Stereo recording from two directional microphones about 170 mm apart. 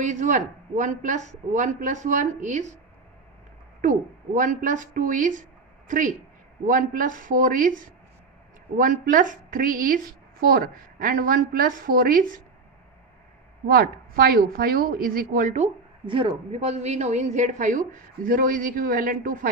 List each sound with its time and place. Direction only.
0.0 s a woman's voice: 45° right (ahead or behind)
3.8 s a woman's voice: 50° right (ahead or behind)
13.7 s a woman's voice: 60° right (ahead or behind)